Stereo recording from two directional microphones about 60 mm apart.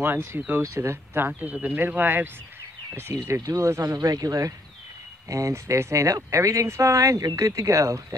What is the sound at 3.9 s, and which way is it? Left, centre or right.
Speech, right.